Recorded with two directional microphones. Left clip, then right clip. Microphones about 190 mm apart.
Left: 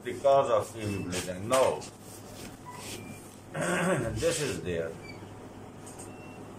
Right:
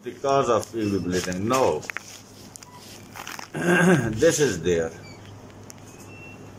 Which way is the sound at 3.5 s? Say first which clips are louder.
Right 9 dB; 60° right (ahead or behind).